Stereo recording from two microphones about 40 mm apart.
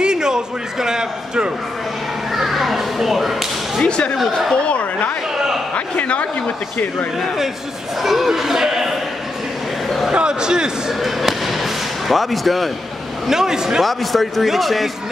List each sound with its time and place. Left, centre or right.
0.0 s a man's voice: centre
2.3 s a sound: centre
3.8 s speech: left
6.0 s a man's voice: left
8.0 s speech: centre
9.8 s a sound: centre
10.1 s a man's voice: right
10.9 s fireworks: centre
13.3 s speech: centre
13.8 s a man's voice: centre